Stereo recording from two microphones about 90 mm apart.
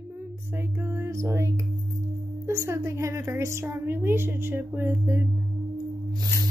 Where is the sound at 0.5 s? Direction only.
25° right (ahead or behind).